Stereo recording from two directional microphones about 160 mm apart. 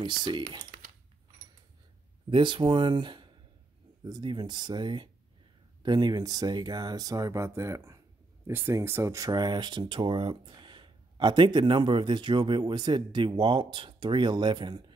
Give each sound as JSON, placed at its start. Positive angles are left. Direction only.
{"t": 0.0, "sound": "speech", "side_deg": -30}
{"t": 2.3, "sound": "speech", "side_deg": -30}